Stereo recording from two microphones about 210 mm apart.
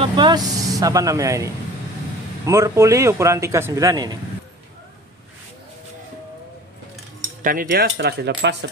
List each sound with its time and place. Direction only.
0.0 s a man's voice: 20° right (ahead or behind)
7.4 s speech: 45° right (ahead or behind)